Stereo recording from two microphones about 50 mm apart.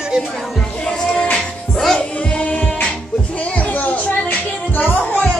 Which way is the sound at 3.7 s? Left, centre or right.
Left.